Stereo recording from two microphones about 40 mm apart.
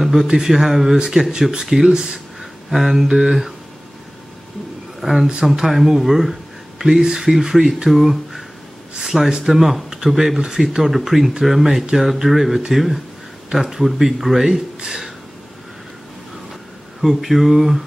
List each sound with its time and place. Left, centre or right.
0.0 s a sound: centre
0.3 s speech: centre
2.7 s speech: centre
5.0 s speech: centre
6.8 s speech: centre
17.0 s speech: centre